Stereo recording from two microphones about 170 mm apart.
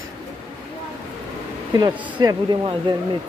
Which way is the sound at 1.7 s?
25° right (ahead or behind).